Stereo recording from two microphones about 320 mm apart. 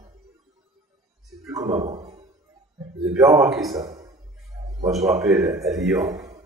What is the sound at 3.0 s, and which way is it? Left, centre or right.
Speech, centre.